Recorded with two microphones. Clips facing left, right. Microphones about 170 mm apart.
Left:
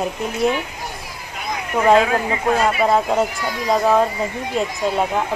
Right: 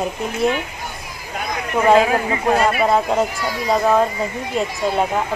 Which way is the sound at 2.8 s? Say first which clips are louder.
Even; centre (ahead or behind).